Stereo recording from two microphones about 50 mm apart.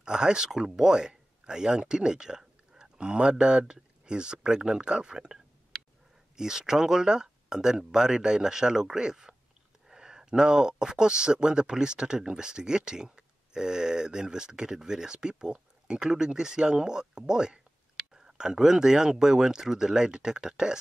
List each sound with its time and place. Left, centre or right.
0.0 s speech: centre